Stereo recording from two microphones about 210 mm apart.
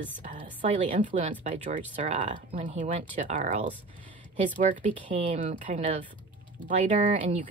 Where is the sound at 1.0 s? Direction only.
35° right (ahead or behind).